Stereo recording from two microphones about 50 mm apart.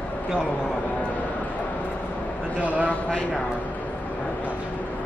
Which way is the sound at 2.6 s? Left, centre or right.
Right.